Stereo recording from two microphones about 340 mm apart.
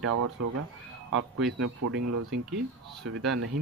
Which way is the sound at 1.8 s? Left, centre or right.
Right.